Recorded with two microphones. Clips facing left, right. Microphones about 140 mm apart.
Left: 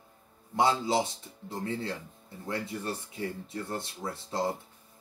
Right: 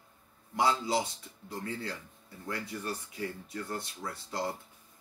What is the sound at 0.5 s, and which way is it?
Speech, 25° left (ahead or behind).